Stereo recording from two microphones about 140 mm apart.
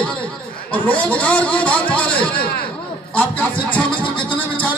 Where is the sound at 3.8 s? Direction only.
35° left (ahead or behind).